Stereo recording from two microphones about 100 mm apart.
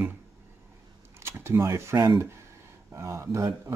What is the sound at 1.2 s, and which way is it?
Speech, 25° right (ahead or behind).